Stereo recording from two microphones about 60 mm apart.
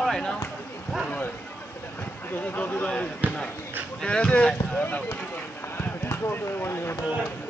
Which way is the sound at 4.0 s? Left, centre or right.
Centre.